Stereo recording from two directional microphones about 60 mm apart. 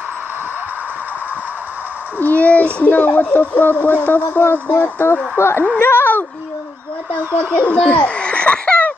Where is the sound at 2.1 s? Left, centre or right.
Left.